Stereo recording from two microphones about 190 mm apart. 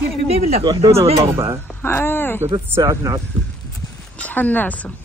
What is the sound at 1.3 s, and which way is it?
Speech, 15° right (ahead or behind).